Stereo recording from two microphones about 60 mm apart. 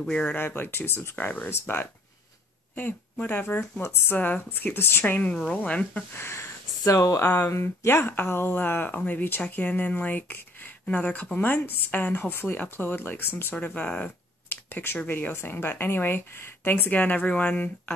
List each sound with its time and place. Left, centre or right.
0.1 s speech: centre
0.4 s speech: left
5.0 s speech: left
6.1 s speech: left
14.5 s a sound: left
15.0 s speech: left
17.0 s speech: left